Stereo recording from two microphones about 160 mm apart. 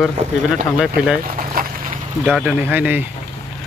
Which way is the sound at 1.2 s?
60° right (ahead or behind).